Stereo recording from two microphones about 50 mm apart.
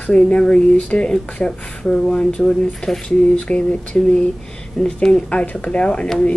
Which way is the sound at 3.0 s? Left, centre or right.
Left.